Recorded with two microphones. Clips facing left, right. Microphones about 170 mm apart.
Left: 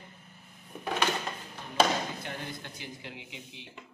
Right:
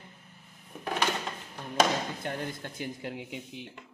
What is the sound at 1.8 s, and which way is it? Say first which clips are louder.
Speech: even; 45° right (ahead or behind).